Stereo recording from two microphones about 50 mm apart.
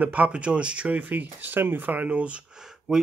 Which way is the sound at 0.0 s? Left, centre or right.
Right.